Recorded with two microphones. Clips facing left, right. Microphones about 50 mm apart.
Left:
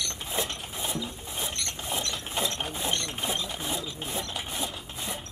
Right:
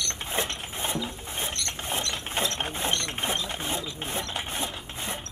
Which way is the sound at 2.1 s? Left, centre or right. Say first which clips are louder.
Right 2 dB; right.